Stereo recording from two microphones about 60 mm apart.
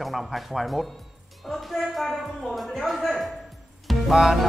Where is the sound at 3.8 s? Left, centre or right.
Centre.